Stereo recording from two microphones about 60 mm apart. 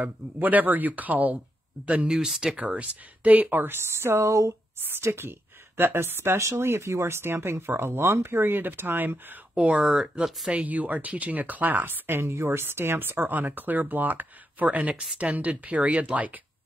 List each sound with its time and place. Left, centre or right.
0.0 s speech: right
2.1 s speech: centre
2.5 s speech: right
4.8 s speech: right
9.8 s speech: centre
10.5 s speech: right